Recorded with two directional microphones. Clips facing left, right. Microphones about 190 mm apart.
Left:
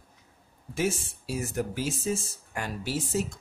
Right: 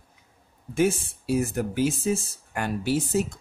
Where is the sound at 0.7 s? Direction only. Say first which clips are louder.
Right 6 dB; 55° right (ahead or behind).